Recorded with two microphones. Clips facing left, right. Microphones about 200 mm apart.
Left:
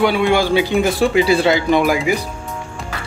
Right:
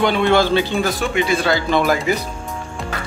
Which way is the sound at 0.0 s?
10° left (ahead or behind).